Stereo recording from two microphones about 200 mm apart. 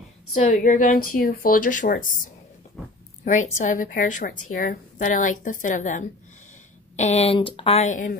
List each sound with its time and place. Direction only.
0.4 s a woman's voice: 40° left (ahead or behind)
3.5 s a woman's voice: 40° left (ahead or behind)